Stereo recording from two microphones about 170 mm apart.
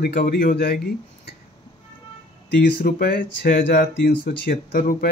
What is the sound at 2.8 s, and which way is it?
Speech, 65° left (ahead or behind).